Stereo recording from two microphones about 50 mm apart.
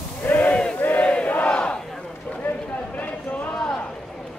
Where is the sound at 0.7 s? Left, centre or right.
Left.